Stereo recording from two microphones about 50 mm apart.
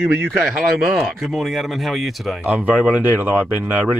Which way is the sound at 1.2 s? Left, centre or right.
Centre.